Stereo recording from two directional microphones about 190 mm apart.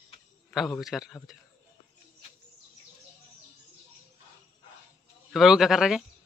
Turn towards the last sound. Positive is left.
turn(degrees=0)  # may be behind; listen again after turning